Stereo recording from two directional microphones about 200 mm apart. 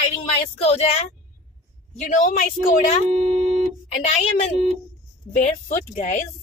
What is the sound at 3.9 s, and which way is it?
Speech, 35° left (ahead or behind).